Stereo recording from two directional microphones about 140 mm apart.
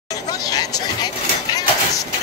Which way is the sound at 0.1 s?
25° left (ahead or behind).